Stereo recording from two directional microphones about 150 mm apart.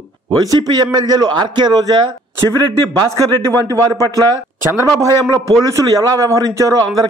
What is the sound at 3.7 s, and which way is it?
Speech, 20° right (ahead or behind).